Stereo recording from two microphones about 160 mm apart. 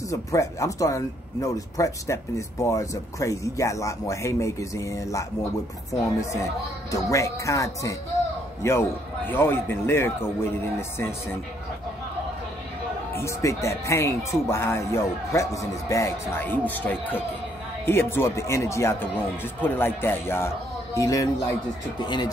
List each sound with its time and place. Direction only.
0.1 s speech: 20° left (ahead or behind)
13.1 s speech: 15° left (ahead or behind)